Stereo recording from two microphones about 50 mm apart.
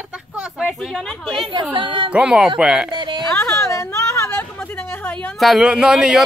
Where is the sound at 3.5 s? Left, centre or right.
Left.